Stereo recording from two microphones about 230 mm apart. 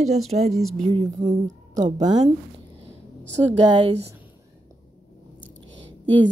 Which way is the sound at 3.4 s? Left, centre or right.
Right.